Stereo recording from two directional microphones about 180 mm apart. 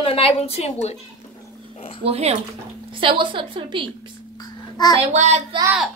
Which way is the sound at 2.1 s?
35° right (ahead or behind).